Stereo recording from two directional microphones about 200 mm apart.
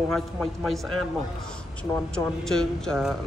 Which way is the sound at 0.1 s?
Centre (ahead or behind).